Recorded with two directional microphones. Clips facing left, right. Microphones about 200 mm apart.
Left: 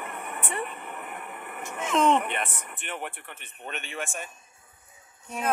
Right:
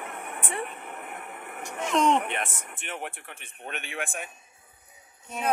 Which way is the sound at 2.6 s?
10° right (ahead or behind).